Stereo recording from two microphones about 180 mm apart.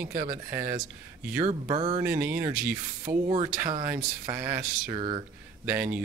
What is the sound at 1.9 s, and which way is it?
Speech, 10° right (ahead or behind).